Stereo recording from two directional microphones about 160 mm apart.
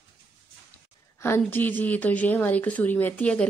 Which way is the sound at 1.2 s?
15° left (ahead or behind).